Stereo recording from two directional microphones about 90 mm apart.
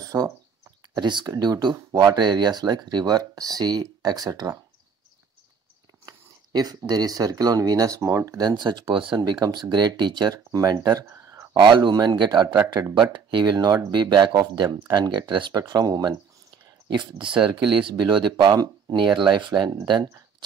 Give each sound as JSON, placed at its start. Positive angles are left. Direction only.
{"t": 0.0, "sound": "bird", "side_deg": -40}
{"t": 0.9, "sound": "speech", "side_deg": -55}
{"t": 6.0, "sound": "speech", "side_deg": -45}
{"t": 8.4, "sound": "speech", "side_deg": -50}
{"t": 10.5, "sound": "speech", "side_deg": -40}
{"t": 11.5, "sound": "speech", "side_deg": -60}
{"t": 16.8, "sound": "speech", "side_deg": -65}